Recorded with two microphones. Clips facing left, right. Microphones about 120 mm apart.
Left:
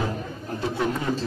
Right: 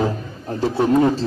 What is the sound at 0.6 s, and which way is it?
Speech, 35° right (ahead or behind).